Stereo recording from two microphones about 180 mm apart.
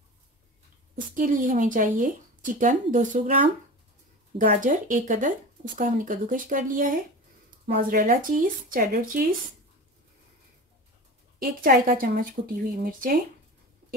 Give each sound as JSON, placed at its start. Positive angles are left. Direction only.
{"t": 1.1, "sound": "speech", "side_deg": -45}
{"t": 11.3, "sound": "speech", "side_deg": -55}